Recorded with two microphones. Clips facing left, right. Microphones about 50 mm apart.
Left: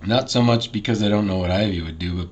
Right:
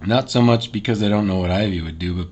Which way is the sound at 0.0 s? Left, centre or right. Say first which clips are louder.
Right 2 dB; centre.